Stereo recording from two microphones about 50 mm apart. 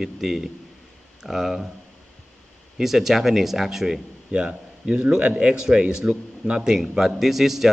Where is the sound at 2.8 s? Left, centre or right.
Centre.